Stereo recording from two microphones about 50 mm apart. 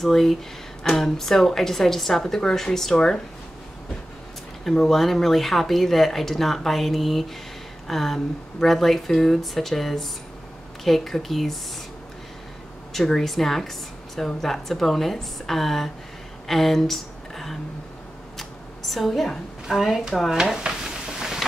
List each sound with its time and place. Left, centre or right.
0.0 s a woman's voice: centre
4.6 s a woman's voice: centre
12.9 s a woman's voice: centre
18.4 s a sound: centre
20.2 s stir: centre